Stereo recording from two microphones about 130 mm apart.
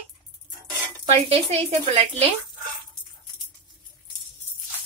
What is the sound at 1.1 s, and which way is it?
Speech, 50° right (ahead or behind).